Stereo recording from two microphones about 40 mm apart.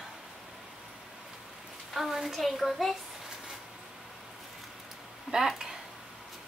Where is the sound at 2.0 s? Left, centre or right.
Centre.